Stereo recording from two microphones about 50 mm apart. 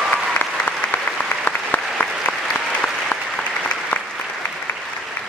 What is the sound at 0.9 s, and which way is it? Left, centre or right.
Applause, left.